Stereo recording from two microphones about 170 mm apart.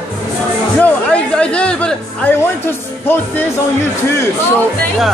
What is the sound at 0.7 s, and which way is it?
Music, 5° left (ahead or behind).